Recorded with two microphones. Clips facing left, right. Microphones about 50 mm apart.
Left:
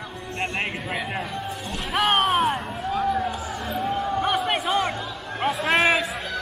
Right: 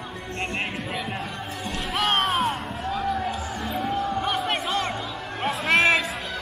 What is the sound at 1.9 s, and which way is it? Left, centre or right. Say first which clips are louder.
Music: left 3 dB; centre.